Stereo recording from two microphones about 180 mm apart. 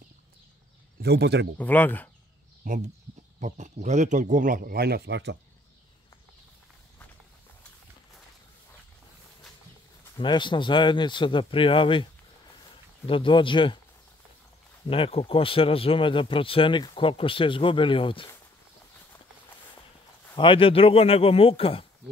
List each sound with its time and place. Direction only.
1.0 s speech: 65° right (ahead or behind)
1.6 s speech: 10° left (ahead or behind)
2.6 s a man's voice: 50° right (ahead or behind); by 5.4 s 70° right (ahead or behind)
10.1 s speech: 25° left (ahead or behind)
14.9 s speech: 30° left (ahead or behind)
20.3 s speech: 30° left (ahead or behind)